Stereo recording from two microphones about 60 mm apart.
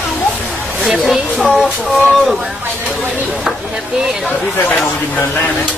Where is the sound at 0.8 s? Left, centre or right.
Centre.